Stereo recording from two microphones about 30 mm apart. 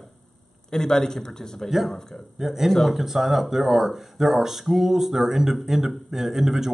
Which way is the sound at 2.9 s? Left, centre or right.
Centre.